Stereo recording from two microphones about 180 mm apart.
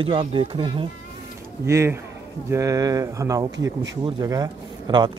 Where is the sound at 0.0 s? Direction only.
30° right (ahead or behind).